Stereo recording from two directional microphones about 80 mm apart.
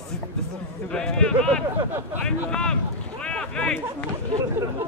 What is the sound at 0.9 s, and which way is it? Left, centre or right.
Speech, centre.